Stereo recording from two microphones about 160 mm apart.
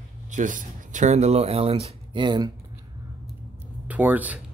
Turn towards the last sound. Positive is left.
turn(degrees=-10)  # may be behind; listen again after turning